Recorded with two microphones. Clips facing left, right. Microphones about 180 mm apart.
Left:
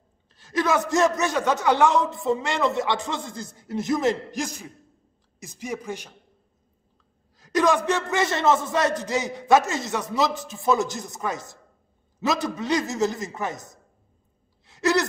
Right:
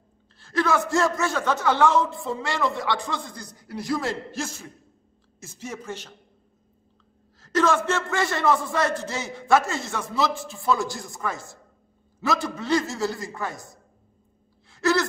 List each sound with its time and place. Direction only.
0.4 s a woman's voice: 20° left (ahead or behind)
7.3 s speech: 15° left (ahead or behind)
14.7 s a sound: 20° left (ahead or behind)